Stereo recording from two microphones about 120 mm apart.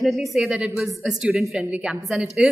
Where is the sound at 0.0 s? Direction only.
Centre (ahead or behind).